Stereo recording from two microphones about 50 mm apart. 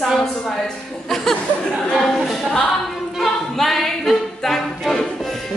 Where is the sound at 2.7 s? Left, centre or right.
Centre.